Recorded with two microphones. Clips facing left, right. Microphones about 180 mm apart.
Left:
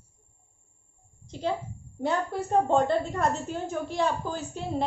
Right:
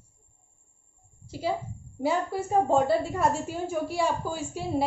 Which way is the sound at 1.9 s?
5° right (ahead or behind).